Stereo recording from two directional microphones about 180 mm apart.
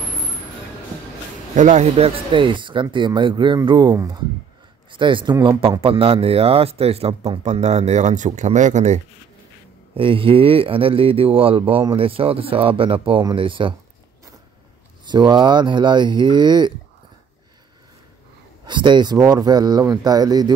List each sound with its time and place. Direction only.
1.5 s speech: 45° right (ahead or behind)
9.9 s speech: 30° right (ahead or behind)
15.0 s speech: 25° right (ahead or behind)
18.7 s speech: 25° right (ahead or behind)